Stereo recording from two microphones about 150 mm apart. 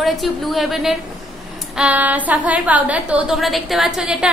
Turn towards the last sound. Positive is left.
turn(degrees=-5)  # may be behind; listen again after turning